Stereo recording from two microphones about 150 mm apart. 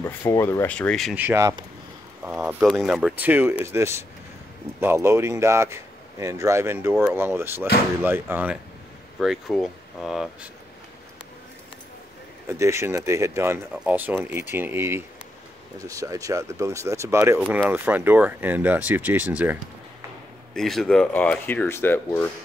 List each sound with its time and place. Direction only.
0.0 s speech: 20° left (ahead or behind)
1.1 s speech: 15° right (ahead or behind)
9.2 s speech: centre (ahead or behind)
12.4 s speech: 20° right (ahead or behind)
20.5 s speech: centre (ahead or behind)